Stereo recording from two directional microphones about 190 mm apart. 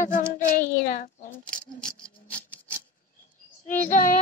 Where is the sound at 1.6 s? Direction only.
5° left (ahead or behind).